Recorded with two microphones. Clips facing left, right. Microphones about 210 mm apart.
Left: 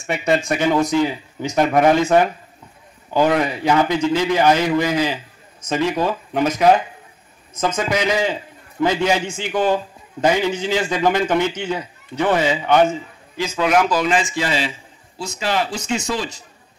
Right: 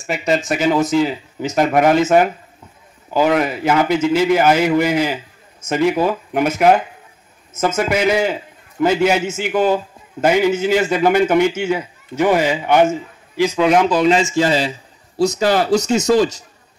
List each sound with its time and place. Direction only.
0.0 s a man's voice: centre (ahead or behind)
13.7 s speech: 25° right (ahead or behind)
14.0 s a man's voice: 35° right (ahead or behind)